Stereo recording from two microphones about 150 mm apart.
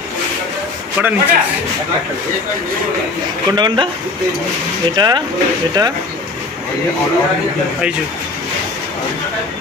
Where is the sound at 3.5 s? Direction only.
30° right (ahead or behind).